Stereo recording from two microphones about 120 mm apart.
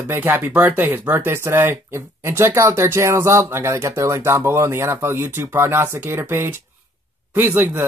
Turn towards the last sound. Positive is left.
turn(degrees=-15)  # may be behind; listen again after turning